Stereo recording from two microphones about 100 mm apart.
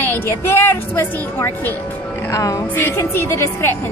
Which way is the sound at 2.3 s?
35° left (ahead or behind).